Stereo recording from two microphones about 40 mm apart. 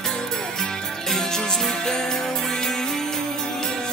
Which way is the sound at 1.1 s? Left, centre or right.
Centre.